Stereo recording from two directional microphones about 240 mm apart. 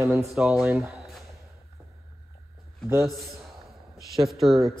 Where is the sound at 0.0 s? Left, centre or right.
Centre.